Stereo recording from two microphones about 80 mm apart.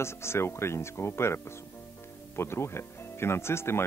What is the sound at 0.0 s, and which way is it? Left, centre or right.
Speech, left.